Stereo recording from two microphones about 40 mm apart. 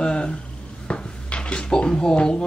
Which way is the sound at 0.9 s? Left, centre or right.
Left.